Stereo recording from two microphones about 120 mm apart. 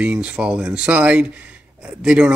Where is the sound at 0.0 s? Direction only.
10° right (ahead or behind).